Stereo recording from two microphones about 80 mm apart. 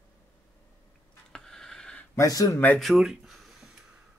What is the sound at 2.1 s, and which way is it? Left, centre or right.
Speech, left.